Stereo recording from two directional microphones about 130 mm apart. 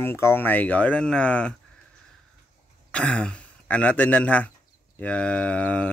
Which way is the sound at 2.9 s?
10° left (ahead or behind).